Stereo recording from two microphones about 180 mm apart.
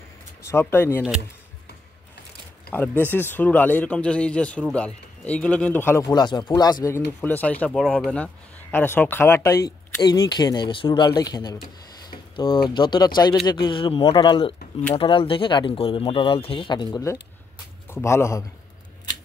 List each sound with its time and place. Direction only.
0.5 s speech: 15° left (ahead or behind)
2.7 s speech: 10° left (ahead or behind)
7.2 s speech: 10° left (ahead or behind)
7.8 s speech: 5° right (ahead or behind)
8.7 s speech: 10° left (ahead or behind)
12.1 s a sound: 25° left (ahead or behind)
12.6 s speech: 25° left (ahead or behind)